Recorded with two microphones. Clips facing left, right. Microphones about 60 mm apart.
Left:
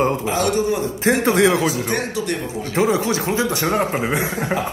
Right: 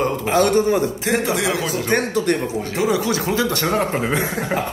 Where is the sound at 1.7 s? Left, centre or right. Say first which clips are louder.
Right 2 dB; right.